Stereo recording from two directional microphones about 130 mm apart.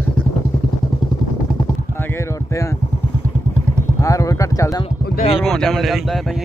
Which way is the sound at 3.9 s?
25° left (ahead or behind).